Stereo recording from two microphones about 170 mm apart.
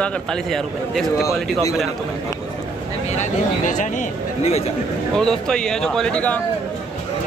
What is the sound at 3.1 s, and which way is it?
Speech, 45° left (ahead or behind).